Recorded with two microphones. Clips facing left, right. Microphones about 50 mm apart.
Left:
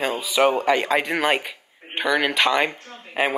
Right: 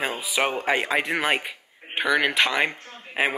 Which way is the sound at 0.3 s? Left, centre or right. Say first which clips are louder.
Left 6 dB; centre.